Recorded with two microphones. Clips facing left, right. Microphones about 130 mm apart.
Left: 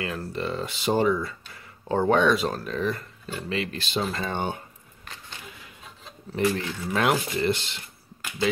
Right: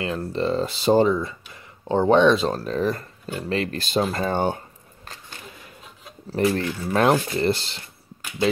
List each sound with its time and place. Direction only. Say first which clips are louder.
0.0 s speech: right 5 dB; 25° right (ahead or behind); by 4.6 s 45° right (ahead or behind)
6.3 s speech: right 3 dB; 45° right (ahead or behind)
6.9 s speech: right 5 dB; 35° right (ahead or behind)